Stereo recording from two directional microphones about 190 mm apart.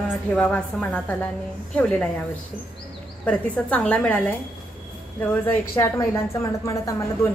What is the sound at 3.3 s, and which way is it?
A woman's voice, 5° left (ahead or behind).